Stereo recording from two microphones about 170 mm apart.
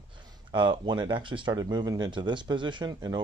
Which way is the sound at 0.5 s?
25° right (ahead or behind).